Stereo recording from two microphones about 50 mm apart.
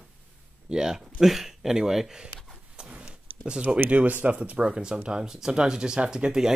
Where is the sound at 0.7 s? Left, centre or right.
Centre.